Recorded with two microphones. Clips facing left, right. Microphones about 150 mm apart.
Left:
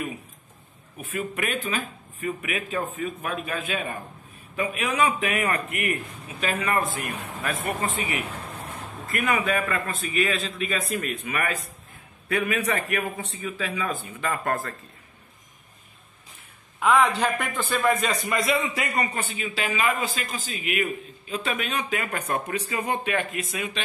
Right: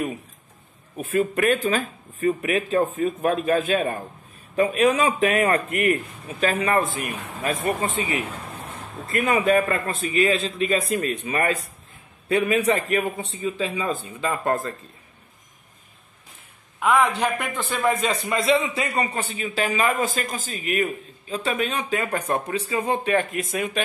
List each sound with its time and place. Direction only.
0.9 s a man's voice: 35° right (ahead or behind)
7.4 s speech: 20° right (ahead or behind)
9.0 s a man's voice: 25° right (ahead or behind)
16.8 s a man's voice: 10° right (ahead or behind); by 23.8 s 50° right (ahead or behind)